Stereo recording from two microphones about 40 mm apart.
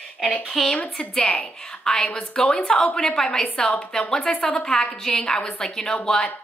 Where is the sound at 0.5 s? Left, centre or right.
Centre.